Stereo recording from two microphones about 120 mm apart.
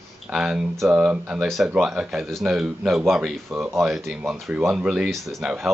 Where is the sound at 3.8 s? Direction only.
Centre (ahead or behind).